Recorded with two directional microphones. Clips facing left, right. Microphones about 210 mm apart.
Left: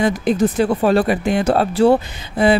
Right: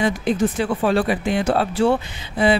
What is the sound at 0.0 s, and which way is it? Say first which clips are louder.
Speech: left 3 dB; 40° left (ahead or behind).